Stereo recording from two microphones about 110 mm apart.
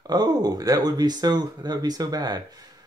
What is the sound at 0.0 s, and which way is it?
Speech, 35° right (ahead or behind).